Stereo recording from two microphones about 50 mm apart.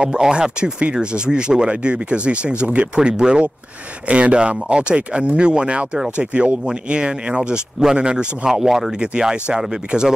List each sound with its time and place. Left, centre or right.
0.0 s speech: centre
8.5 s speech: centre
9.0 s speech: centre